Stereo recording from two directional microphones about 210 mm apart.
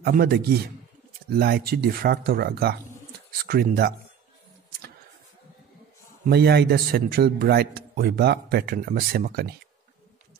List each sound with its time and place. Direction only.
0.0 s a man's voice: 50° right (ahead or behind)
6.2 s a man's voice: 50° right (ahead or behind)